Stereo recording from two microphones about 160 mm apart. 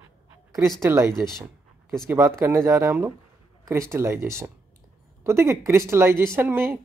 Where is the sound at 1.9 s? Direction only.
15° right (ahead or behind).